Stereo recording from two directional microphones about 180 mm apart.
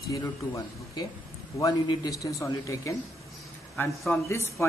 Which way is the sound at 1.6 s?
20° left (ahead or behind).